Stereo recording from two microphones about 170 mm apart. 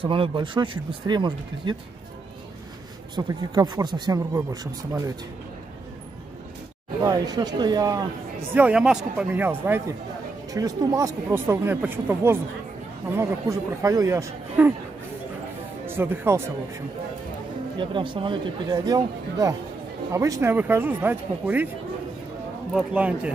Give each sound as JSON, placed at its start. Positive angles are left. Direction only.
{"t": 0.0, "sound": "speech", "side_deg": -30}
{"t": 3.2, "sound": "speech", "side_deg": -25}
{"t": 7.0, "sound": "speech", "side_deg": -20}
{"t": 8.5, "sound": "speech", "side_deg": -5}
{"t": 15.9, "sound": "speech", "side_deg": -15}
{"t": 17.7, "sound": "speech", "side_deg": -30}
{"t": 22.8, "sound": "speech", "side_deg": -5}